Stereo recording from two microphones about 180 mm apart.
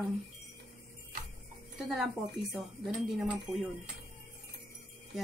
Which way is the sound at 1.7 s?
Centre (ahead or behind).